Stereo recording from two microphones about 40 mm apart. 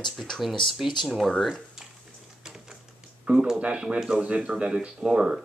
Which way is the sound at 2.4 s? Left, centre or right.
Centre.